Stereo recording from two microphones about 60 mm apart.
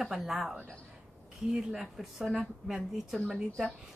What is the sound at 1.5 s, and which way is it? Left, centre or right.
A woman's voice, centre.